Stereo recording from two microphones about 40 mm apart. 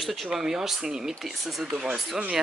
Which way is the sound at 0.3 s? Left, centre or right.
Centre.